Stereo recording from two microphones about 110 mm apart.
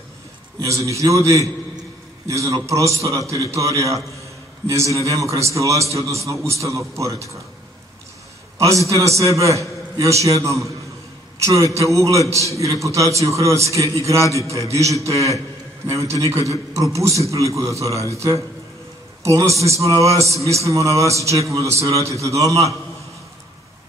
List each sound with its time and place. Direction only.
0.6 s a man's voice: 30° right (ahead or behind)
8.5 s a man's voice: 30° right (ahead or behind)
16.0 s a man's voice: 25° right (ahead or behind)